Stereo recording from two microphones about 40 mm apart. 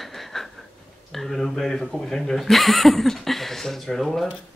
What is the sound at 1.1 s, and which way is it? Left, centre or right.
Speech, centre.